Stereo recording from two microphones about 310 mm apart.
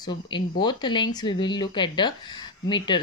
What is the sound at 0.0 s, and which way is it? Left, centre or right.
Speech, centre.